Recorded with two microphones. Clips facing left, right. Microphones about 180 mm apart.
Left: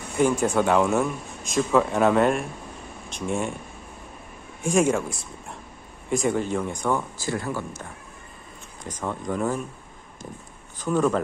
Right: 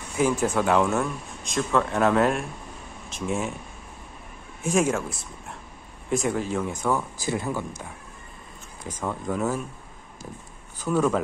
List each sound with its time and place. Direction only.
0.1 s speech: centre (ahead or behind)
4.6 s speech: centre (ahead or behind)
7.2 s speech: 20° right (ahead or behind)
10.8 s speech: 5° right (ahead or behind)